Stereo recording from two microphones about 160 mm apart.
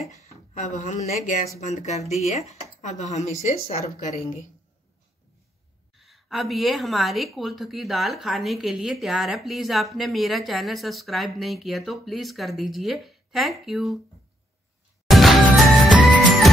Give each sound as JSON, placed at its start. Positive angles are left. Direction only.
{"t": 0.6, "sound": "speech", "side_deg": 50}
{"t": 5.9, "sound": "speech", "side_deg": 0}
{"t": 15.0, "sound": "music", "side_deg": 0}